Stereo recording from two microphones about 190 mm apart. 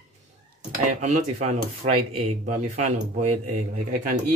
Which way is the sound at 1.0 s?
35° right (ahead or behind).